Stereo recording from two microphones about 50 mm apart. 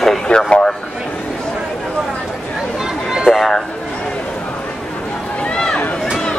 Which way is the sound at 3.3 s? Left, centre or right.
Centre.